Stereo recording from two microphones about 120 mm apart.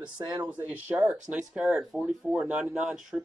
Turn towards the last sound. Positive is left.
turn(degrees=0)  # may be behind; listen again after turning